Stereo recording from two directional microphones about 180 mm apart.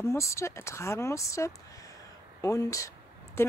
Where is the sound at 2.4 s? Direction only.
15° left (ahead or behind).